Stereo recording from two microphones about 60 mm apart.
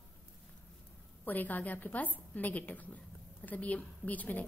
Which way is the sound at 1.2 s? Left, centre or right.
Left.